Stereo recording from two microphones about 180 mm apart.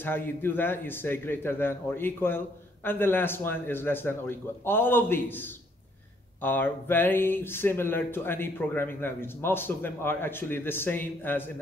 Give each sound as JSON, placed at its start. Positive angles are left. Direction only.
{"t": 0.0, "sound": "a man's voice", "side_deg": 10}